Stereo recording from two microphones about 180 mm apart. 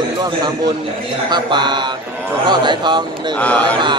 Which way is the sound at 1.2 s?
25° right (ahead or behind).